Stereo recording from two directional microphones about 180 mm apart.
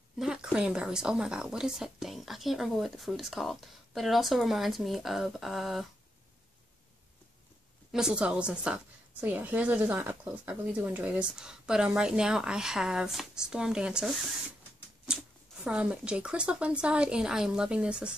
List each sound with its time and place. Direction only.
0.2 s a woman's voice: 5° right (ahead or behind)
7.9 s a woman's voice: 5° right (ahead or behind)